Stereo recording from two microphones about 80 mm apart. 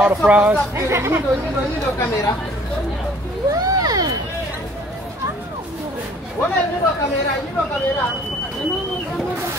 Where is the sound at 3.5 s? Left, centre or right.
Right.